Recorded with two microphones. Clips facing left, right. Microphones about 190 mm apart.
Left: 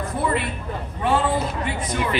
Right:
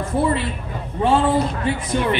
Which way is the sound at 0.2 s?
30° right (ahead or behind).